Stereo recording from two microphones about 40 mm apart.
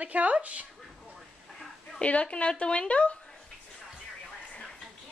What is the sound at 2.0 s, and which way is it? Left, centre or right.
Speech, left.